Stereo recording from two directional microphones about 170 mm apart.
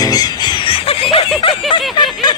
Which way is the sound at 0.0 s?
20° left (ahead or behind).